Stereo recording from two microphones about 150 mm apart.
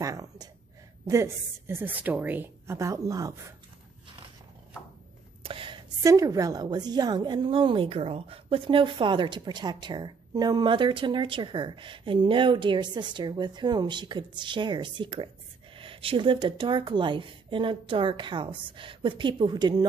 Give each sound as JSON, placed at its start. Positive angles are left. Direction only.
{"t": 0.0, "sound": "a woman's voice", "side_deg": -25}
{"t": 5.4, "sound": "whispering", "side_deg": -35}
{"t": 6.0, "sound": "a woman's voice", "side_deg": -20}